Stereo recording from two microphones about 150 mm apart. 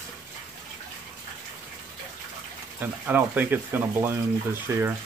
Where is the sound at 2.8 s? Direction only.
10° right (ahead or behind).